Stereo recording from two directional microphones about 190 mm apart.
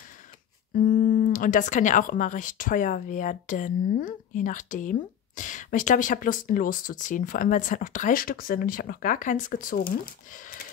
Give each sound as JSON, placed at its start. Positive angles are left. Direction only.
{"t": 0.9, "sound": "speech", "side_deg": 45}